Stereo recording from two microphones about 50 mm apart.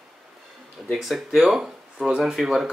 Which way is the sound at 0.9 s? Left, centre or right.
Centre.